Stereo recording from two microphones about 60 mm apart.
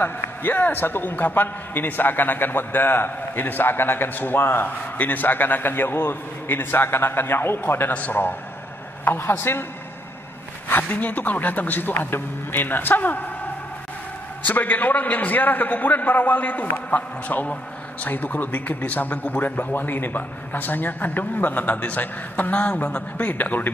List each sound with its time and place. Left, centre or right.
0.0 s a man's voice: left
7.9 s a man's voice: left
9.0 s a man's voice: left
10.7 s a man's voice: left
14.4 s a man's voice: left